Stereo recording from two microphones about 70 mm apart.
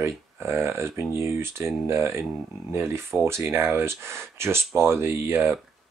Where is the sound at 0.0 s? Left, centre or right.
Right.